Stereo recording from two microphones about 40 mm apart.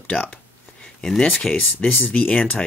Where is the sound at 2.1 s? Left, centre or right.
Left.